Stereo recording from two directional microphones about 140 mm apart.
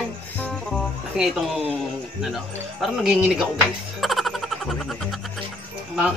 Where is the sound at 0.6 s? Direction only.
5° right (ahead or behind).